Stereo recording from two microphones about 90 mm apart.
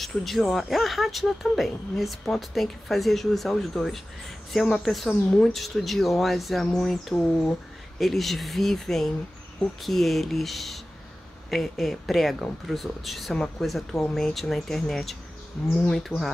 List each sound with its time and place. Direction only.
0.0 s speech: centre (ahead or behind)
15.9 s speech: centre (ahead or behind)